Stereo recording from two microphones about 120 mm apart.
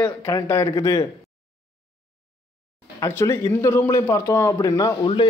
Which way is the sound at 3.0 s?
20° left (ahead or behind).